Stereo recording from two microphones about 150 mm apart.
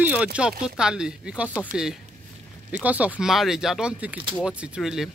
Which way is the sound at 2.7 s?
10° right (ahead or behind).